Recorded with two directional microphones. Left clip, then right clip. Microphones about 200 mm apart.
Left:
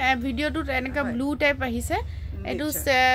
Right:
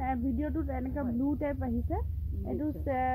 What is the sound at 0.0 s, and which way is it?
A woman's voice, 15° left (ahead or behind).